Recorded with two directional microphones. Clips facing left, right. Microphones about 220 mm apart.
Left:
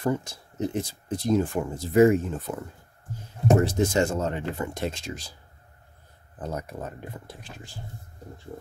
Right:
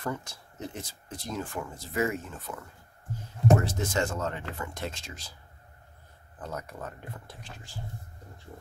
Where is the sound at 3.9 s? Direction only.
25° left (ahead or behind).